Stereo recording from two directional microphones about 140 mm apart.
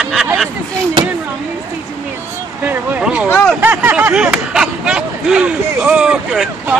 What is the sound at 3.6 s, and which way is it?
Speech, 10° right (ahead or behind).